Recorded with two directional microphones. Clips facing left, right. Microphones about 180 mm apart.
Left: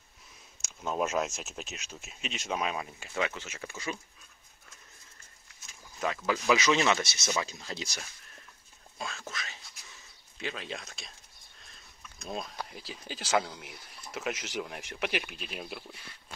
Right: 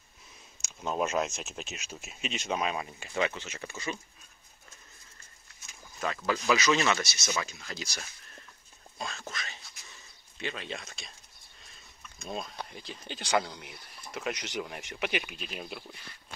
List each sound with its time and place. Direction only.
0.6 s speech: centre (ahead or behind)
5.9 s speech: 10° left (ahead or behind); by 8.0 s 25° left (ahead or behind)
8.9 s a sound: 5° left (ahead or behind)
10.3 s speech: centre (ahead or behind)